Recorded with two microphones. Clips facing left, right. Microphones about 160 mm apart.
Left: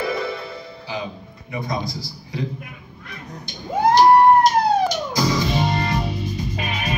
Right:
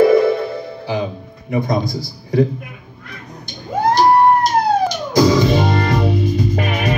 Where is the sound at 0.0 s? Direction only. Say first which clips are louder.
Right 13 dB; 50° right (ahead or behind).